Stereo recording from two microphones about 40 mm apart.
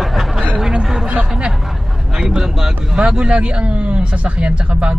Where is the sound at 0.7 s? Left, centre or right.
Centre.